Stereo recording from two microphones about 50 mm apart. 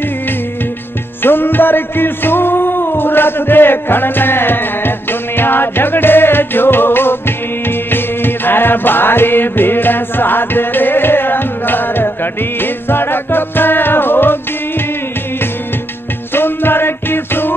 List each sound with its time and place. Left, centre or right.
1.2 s music: left
16.3 s music: left